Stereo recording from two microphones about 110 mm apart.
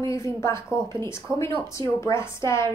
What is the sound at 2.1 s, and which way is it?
Speech, 25° left (ahead or behind).